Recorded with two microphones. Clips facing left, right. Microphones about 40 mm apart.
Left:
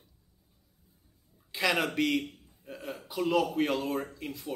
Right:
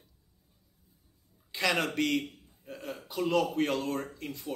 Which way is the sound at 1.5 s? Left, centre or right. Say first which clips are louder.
Left 1 dB; centre.